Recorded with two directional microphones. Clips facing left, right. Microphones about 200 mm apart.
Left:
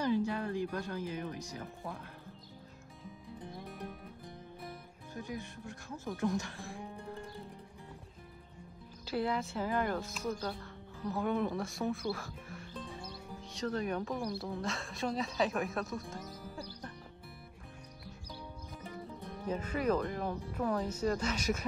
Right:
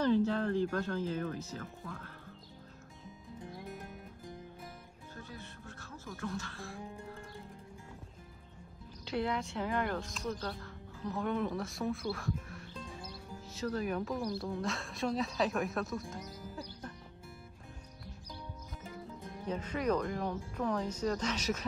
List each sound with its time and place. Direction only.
0.0 s speech: 10° left (ahead or behind)
5.1 s speech: 15° left (ahead or behind)
9.0 s speech: centre (ahead or behind)
16.5 s music: centre (ahead or behind)
19.4 s speech: 10° left (ahead or behind)